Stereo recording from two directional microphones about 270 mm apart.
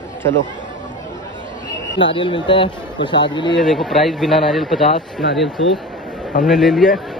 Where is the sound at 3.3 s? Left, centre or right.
Centre.